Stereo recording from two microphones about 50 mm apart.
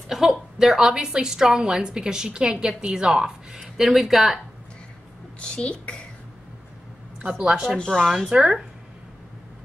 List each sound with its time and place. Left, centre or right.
0.1 s a woman's voice: centre
5.4 s speech: centre
7.3 s a woman's voice: centre
7.8 s speech: centre
8.3 s a woman's voice: centre